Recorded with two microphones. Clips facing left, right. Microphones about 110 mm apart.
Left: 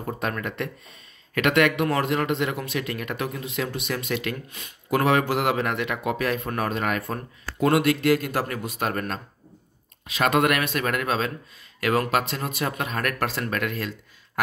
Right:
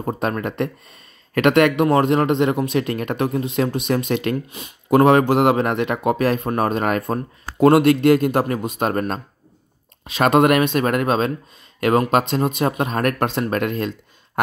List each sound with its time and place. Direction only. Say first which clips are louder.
0.0 s speech: right 6 dB; 35° right (ahead or behind)